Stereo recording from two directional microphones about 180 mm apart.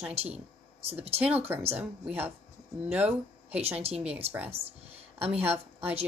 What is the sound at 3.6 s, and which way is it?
Speech, 35° right (ahead or behind).